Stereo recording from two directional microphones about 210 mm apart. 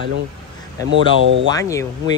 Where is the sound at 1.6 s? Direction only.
15° left (ahead or behind).